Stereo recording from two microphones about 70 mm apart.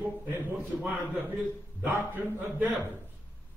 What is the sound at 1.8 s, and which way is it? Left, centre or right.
Speech, right.